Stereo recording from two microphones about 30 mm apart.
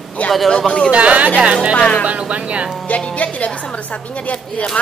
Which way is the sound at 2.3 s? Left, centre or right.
Right.